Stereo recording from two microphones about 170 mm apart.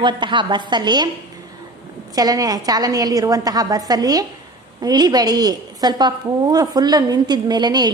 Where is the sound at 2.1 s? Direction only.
20° right (ahead or behind).